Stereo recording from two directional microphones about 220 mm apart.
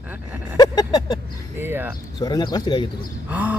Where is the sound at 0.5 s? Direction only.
15° left (ahead or behind).